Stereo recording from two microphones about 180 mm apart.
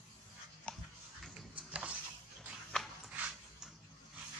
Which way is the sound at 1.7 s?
5° right (ahead or behind).